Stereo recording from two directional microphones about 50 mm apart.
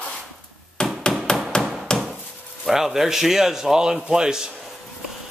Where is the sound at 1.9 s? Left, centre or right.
Centre.